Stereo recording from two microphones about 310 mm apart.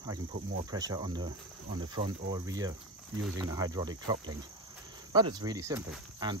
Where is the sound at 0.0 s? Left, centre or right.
Centre.